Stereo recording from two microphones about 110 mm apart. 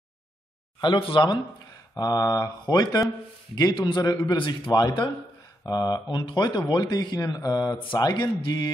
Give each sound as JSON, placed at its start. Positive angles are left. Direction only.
{"t": 0.7, "sound": "speech", "side_deg": 50}
{"t": 2.0, "sound": "speech", "side_deg": 35}
{"t": 7.7, "sound": "speech", "side_deg": 50}